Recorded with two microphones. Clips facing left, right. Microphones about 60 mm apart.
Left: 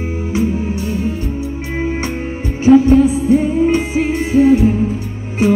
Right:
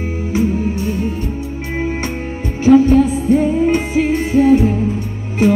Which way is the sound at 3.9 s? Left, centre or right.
Centre.